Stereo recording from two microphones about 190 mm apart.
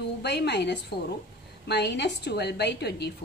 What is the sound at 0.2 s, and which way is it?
A woman's voice, 60° left (ahead or behind).